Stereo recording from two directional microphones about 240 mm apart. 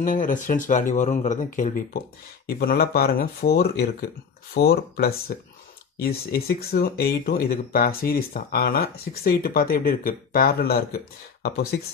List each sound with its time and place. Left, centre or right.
0.0 s speech: left